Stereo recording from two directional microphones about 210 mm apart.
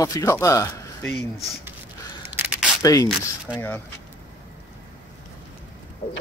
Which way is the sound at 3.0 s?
5° right (ahead or behind).